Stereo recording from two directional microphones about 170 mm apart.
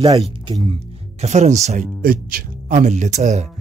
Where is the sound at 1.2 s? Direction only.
45° right (ahead or behind).